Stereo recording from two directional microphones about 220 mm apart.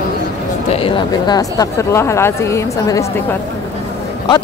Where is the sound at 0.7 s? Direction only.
25° left (ahead or behind).